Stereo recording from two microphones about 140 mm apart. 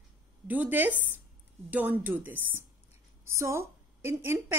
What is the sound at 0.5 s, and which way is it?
A woman's voice, 10° right (ahead or behind).